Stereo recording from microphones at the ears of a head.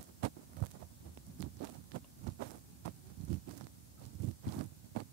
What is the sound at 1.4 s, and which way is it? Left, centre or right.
Heart sounds, right.